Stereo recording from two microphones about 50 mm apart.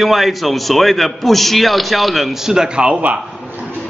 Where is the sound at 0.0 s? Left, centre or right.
Centre.